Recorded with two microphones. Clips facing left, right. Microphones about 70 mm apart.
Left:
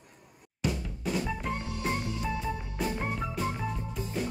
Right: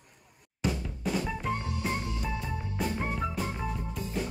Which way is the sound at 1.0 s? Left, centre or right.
Centre.